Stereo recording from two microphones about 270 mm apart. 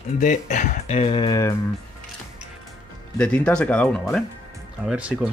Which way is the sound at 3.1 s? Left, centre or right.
Centre.